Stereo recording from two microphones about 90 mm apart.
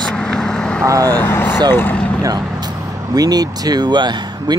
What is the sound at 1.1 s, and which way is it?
Speech, 25° left (ahead or behind).